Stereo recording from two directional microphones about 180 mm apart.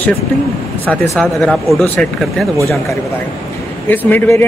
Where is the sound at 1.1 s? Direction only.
Centre (ahead or behind).